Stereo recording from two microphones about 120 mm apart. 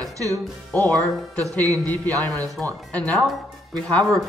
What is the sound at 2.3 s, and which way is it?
Speech, 5° left (ahead or behind).